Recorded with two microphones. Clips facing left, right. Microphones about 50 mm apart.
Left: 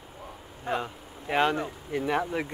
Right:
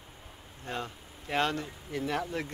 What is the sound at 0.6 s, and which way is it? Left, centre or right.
Speech, centre.